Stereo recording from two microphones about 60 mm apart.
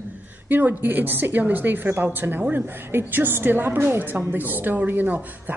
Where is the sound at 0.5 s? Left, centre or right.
Right.